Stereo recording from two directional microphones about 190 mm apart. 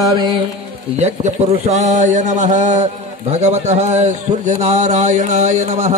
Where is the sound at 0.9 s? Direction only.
35° right (ahead or behind).